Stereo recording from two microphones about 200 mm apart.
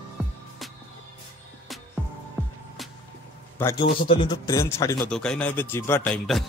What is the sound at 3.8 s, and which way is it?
A man's voice, 25° left (ahead or behind).